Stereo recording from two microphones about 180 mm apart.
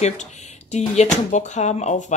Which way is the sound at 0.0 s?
40° left (ahead or behind).